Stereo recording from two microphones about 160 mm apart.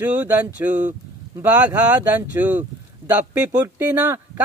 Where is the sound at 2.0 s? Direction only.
10° right (ahead or behind).